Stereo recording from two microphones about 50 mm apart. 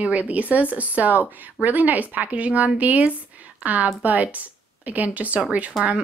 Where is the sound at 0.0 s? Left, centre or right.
Right.